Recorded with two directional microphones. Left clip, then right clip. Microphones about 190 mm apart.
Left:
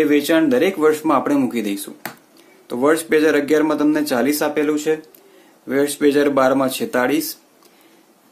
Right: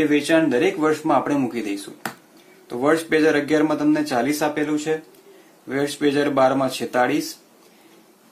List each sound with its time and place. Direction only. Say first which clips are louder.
0.0 s speech: left 2 dB; 50° left (ahead or behind)